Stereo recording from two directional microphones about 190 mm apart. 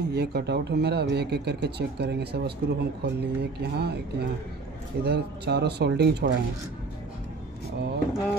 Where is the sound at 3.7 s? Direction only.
60° right (ahead or behind).